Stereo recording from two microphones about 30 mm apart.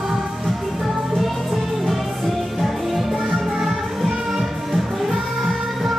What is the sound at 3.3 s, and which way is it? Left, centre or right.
Music, centre.